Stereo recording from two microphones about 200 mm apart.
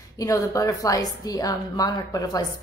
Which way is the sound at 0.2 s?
15° left (ahead or behind).